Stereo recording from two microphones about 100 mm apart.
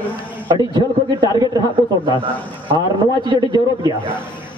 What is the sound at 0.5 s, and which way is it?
Speech, 45° right (ahead or behind).